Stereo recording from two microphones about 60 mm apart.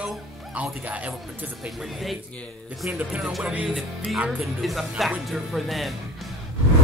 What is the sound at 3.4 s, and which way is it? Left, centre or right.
Speech, right.